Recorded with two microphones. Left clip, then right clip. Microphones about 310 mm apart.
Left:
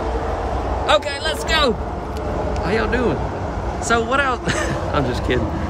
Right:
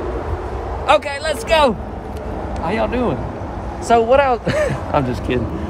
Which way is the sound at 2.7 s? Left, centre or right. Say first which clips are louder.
Right 1 dB; centre.